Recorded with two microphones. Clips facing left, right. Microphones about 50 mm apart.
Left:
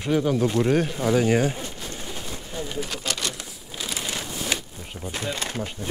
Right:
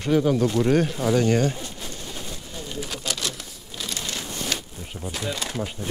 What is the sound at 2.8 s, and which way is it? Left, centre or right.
Crumpling, centre.